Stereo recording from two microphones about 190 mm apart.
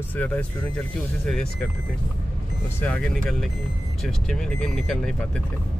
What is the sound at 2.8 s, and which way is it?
Speech, 10° left (ahead or behind).